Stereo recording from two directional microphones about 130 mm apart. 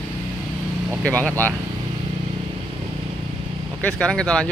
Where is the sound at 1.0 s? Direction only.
10° left (ahead or behind).